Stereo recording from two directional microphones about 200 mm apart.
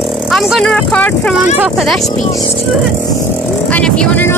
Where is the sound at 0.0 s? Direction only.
Centre (ahead or behind).